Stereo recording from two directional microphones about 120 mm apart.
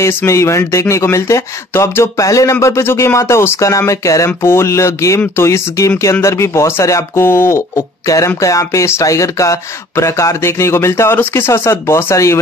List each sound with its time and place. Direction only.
0.0 s speech: 25° left (ahead or behind)